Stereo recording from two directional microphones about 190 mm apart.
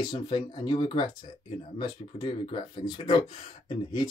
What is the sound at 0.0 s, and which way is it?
Speech, 25° left (ahead or behind).